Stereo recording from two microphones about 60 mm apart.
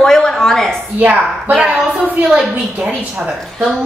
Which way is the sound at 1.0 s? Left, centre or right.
Right.